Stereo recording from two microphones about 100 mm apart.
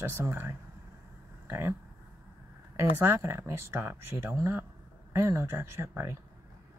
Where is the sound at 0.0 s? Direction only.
25° right (ahead or behind).